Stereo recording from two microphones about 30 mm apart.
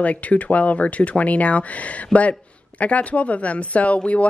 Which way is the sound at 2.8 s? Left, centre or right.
Left.